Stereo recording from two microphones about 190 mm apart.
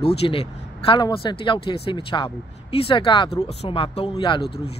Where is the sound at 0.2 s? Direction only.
30° left (ahead or behind).